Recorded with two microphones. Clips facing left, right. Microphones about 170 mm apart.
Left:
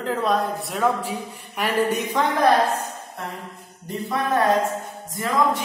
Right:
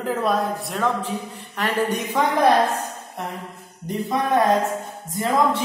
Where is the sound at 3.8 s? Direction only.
20° right (ahead or behind).